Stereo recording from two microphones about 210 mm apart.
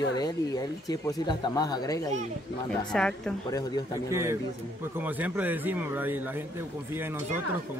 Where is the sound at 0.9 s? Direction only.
20° left (ahead or behind).